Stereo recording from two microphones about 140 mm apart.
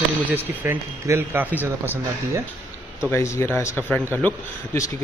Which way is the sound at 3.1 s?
20° left (ahead or behind).